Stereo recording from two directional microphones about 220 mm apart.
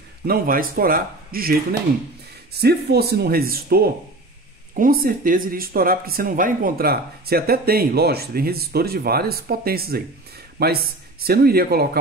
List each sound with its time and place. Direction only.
0.3 s speech: 40° right (ahead or behind)